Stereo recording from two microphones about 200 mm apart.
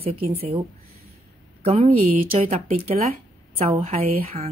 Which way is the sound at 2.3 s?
30° right (ahead or behind).